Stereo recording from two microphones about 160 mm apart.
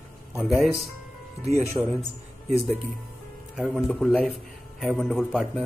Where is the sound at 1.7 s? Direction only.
15° right (ahead or behind).